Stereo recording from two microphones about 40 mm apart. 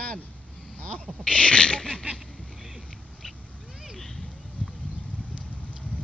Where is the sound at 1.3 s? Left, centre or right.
Left.